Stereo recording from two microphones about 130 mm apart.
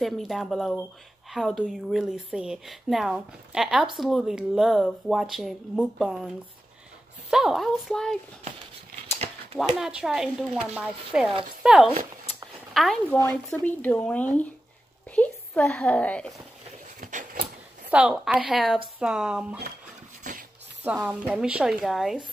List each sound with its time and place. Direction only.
0.0 s speech: centre (ahead or behind)
7.2 s speech: 5° right (ahead or behind)
9.8 s speech: 5° right (ahead or behind)
13.5 s a woman's voice: 10° left (ahead or behind)
17.0 s a sound: 75° right (ahead or behind)
17.8 s speech: 10° right (ahead or behind)
20.8 s speech: 10° right (ahead or behind)